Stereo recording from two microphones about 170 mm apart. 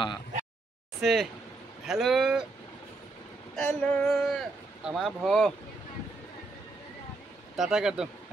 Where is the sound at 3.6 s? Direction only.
5° left (ahead or behind).